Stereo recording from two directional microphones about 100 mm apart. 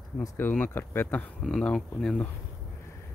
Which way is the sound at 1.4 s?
5° left (ahead or behind).